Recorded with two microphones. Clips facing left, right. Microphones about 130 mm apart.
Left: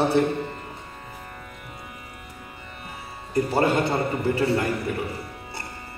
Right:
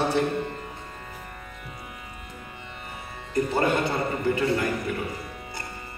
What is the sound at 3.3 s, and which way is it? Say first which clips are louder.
A man's voice: left 2 dB; 30° left (ahead or behind).